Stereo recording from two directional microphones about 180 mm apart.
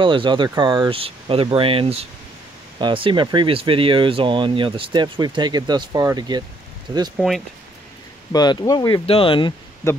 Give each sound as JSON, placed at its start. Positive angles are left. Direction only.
{"t": 0.0, "sound": "speech", "side_deg": -25}
{"t": 7.2, "sound": "speech", "side_deg": 0}
{"t": 8.3, "sound": "speech", "side_deg": 20}